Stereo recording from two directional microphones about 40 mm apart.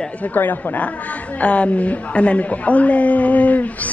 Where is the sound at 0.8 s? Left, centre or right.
Left.